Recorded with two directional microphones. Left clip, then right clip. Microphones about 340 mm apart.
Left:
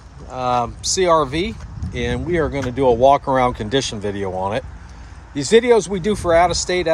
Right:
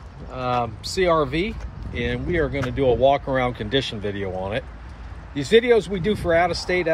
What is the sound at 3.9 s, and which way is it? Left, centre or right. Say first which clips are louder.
Speech: left 4 dB; left.